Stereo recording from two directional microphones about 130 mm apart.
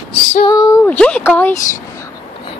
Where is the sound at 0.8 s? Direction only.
10° left (ahead or behind).